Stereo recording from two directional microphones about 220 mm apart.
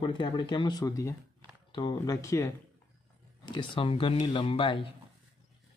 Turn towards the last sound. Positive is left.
turn(degrees=25)  # may be behind; listen again after turning